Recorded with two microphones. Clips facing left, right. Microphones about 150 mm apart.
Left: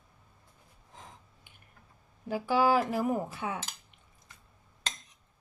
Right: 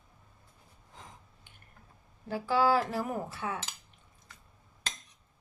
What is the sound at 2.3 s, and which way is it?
Cutlery, 15° left (ahead or behind).